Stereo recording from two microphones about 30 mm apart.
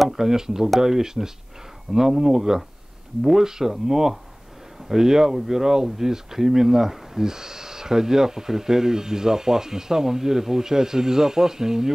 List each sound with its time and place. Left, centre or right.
0.1 s speech: centre